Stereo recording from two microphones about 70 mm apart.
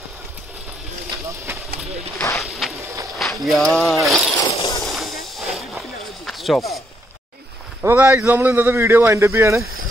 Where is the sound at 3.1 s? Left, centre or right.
Centre.